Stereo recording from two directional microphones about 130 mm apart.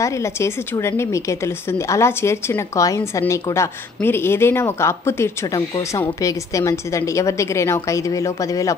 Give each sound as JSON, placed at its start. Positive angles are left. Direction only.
{"t": 0.0, "sound": "a woman's voice", "side_deg": 20}